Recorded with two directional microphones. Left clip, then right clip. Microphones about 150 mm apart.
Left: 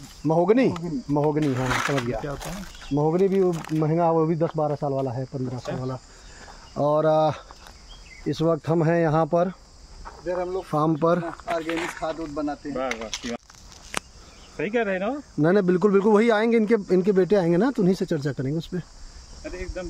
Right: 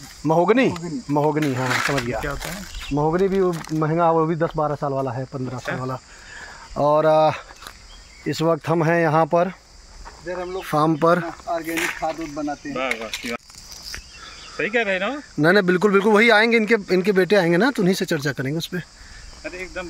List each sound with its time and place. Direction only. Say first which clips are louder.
0.3 s speech: right 3 dB; 15° right (ahead or behind)
3.8 s speech: right 3 dB; 10° right (ahead or behind)
4.6 s speech: right 2 dB; 20° right (ahead or behind)
5.3 s speech: right 3 dB; 25° right (ahead or behind)
6.8 s speech: right 4 dB; centre (ahead or behind)
10.7 s speech: right 5 dB; 5° right (ahead or behind)
11.7 s speech: right 4 dB; 20° left (ahead or behind)
12.9 s speech: right 4 dB; 5° right (ahead or behind)
14.6 s speech: right 4 dB; 90° left; by 15.1 s 75° left (ahead or behind)
15.4 s speech: right 4 dB; 10° left (ahead or behind)
19.4 s speech: right 3 dB; 30° right (ahead or behind)